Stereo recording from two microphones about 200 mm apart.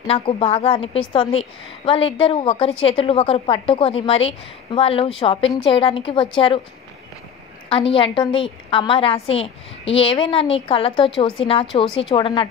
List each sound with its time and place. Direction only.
0.0 s a woman's voice: 30° left (ahead or behind)
7.7 s a woman's voice: 25° left (ahead or behind)